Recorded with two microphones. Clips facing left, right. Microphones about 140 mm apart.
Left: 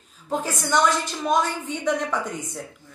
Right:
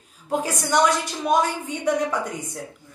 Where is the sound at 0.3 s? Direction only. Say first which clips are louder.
Right 1 dB; 10° right (ahead or behind).